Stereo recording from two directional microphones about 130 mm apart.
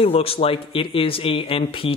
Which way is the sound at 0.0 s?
50° left (ahead or behind).